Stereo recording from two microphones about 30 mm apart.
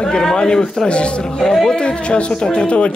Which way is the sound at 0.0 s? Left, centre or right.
Centre.